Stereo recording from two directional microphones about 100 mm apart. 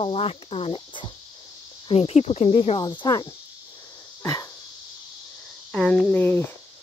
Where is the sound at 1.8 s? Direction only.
90° left.